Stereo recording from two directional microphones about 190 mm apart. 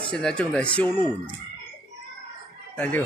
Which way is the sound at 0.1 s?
5° left (ahead or behind).